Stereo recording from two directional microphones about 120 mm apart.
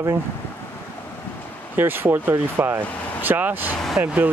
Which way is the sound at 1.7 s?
15° right (ahead or behind).